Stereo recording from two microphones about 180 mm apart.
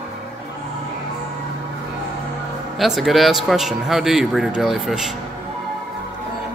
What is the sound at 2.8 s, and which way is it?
Speech, centre (ahead or behind).